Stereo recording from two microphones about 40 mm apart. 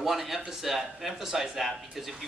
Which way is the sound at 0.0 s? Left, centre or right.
Centre.